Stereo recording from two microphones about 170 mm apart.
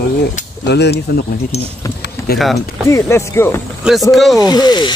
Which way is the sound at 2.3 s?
65° left (ahead or behind).